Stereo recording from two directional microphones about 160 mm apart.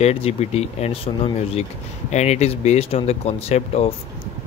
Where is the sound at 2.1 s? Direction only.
45° left (ahead or behind).